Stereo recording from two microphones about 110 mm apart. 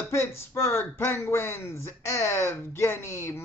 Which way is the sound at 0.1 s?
25° left (ahead or behind).